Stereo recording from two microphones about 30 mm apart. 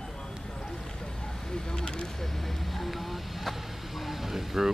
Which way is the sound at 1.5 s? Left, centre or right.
Left.